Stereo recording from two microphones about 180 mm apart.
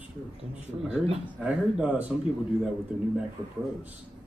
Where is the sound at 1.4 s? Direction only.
5° right (ahead or behind).